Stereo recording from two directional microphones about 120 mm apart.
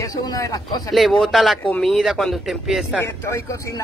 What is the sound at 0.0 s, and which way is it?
Speech, 30° left (ahead or behind).